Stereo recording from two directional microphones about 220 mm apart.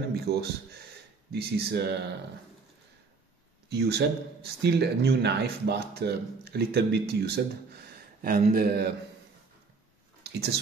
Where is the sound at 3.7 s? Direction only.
50° right (ahead or behind).